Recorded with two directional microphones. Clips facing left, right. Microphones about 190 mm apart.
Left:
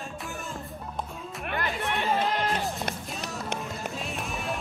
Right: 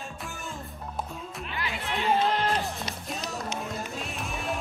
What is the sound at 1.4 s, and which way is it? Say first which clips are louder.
Music: left 6 dB; 55° left (ahead or behind).